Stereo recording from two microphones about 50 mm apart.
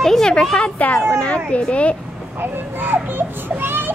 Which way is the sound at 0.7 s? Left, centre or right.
Left.